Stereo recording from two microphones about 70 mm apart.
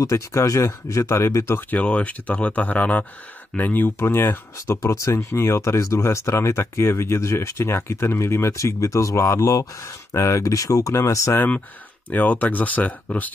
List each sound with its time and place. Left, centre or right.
0.0 s speech: left
12.1 s speech: left